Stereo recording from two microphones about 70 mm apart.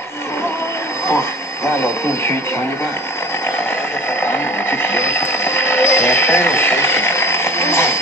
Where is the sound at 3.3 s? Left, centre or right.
Left.